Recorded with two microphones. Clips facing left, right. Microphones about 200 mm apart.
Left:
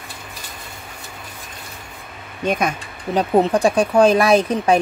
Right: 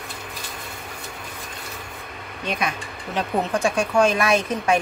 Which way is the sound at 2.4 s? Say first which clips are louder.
Left 6 dB; 50° left (ahead or behind).